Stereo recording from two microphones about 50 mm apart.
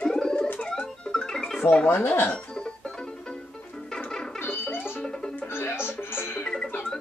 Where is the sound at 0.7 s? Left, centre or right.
Centre.